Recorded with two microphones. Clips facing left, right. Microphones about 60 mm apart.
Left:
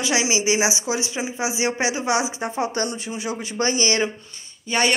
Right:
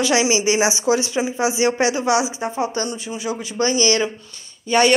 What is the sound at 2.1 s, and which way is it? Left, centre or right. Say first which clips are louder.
A woman's voice: right 3 dB; left.